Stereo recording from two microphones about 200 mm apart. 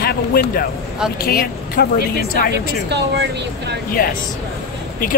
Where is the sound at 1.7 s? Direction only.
50° left (ahead or behind).